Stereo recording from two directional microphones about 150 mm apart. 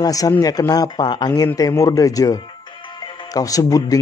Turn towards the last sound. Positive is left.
turn(degrees=25)  # may be behind; listen again after turning